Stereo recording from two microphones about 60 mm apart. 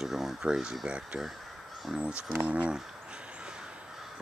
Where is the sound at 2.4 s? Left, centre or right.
Right.